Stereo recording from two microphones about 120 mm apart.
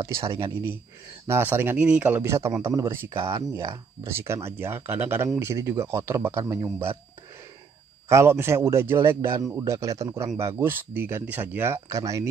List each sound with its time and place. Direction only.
0.0 s speech: 25° right (ahead or behind)
1.2 s speech: 20° right (ahead or behind)
2.2 s speech: 25° right (ahead or behind)
8.1 s speech: 20° right (ahead or behind)